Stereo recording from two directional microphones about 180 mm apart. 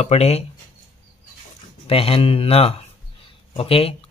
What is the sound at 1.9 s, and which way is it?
Speech, 30° left (ahead or behind).